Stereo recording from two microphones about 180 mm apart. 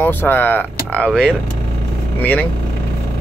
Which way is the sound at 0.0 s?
10° left (ahead or behind).